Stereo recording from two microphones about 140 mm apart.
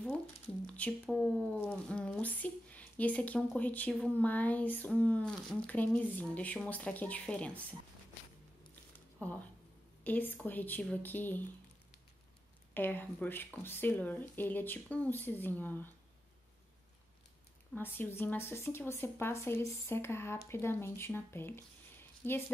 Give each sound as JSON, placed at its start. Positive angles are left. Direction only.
{"t": 0.7, "sound": "speech", "side_deg": 10}
{"t": 9.2, "sound": "speech", "side_deg": 10}
{"t": 12.7, "sound": "speech", "side_deg": 15}
{"t": 17.7, "sound": "speech", "side_deg": 15}